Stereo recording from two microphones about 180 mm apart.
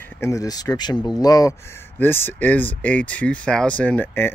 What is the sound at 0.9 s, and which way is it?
Speech, centre (ahead or behind).